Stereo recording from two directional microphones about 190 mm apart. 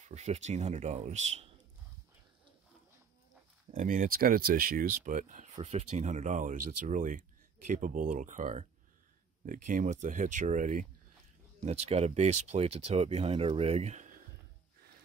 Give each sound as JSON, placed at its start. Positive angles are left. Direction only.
{"t": 0.1, "sound": "speech", "side_deg": -35}
{"t": 3.7, "sound": "speech", "side_deg": -45}